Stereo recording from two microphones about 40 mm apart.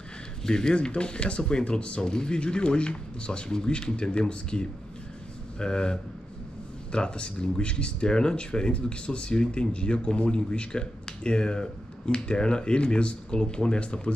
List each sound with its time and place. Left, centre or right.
0.5 s speech: centre